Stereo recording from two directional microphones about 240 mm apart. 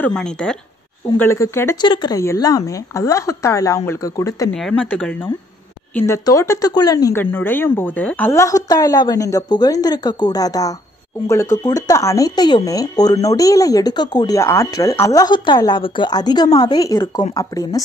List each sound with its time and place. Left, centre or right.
0.0 s speech: centre